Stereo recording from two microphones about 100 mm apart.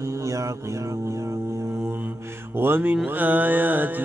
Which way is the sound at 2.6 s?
20° right (ahead or behind).